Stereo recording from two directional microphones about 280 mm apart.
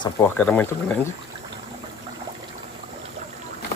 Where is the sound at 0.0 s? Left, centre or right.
Centre.